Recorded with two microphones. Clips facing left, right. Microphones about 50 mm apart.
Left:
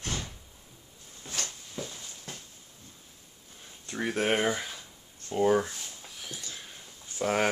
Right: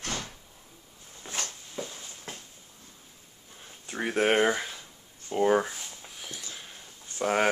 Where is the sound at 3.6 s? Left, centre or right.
Centre.